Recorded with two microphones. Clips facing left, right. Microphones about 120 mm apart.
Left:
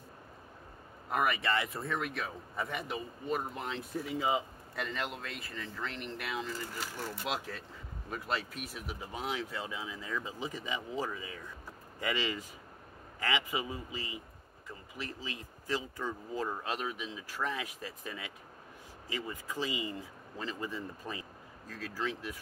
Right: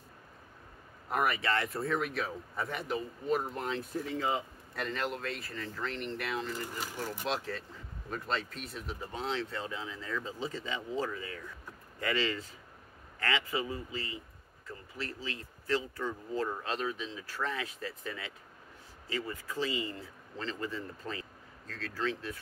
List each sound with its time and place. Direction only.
1.1 s speech: centre (ahead or behind)
4.0 s speech: 10° left (ahead or behind)
4.7 s speech: centre (ahead or behind)